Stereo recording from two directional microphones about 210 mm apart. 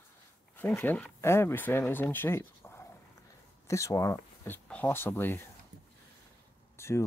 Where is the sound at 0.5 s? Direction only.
10° left (ahead or behind).